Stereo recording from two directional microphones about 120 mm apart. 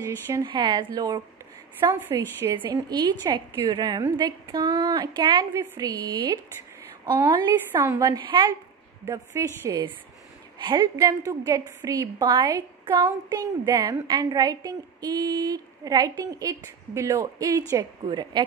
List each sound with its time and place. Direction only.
0.5 s a woman's voice: 40° right (ahead or behind)
1.9 s a woman's voice: 20° right (ahead or behind)
2.7 s a woman's voice: 35° right (ahead or behind)
11.0 s a woman's voice: 30° right (ahead or behind)
12.3 s a woman's voice: 40° right (ahead or behind)